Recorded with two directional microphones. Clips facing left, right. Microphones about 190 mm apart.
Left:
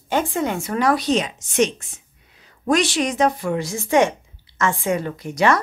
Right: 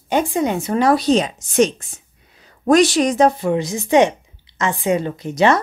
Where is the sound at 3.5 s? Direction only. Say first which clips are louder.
Right 3 dB; 20° right (ahead or behind).